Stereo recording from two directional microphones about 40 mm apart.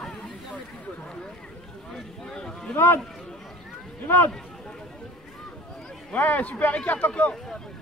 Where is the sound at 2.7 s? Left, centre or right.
Left.